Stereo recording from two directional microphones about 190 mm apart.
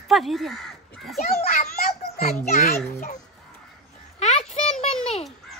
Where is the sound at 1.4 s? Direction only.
40° left (ahead or behind).